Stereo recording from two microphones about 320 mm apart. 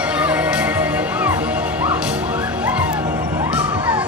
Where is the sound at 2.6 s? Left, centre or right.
Centre.